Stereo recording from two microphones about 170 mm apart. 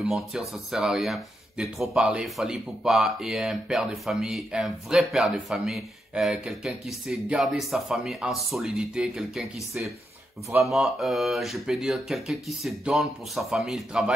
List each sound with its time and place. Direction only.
0.0 s speech: centre (ahead or behind)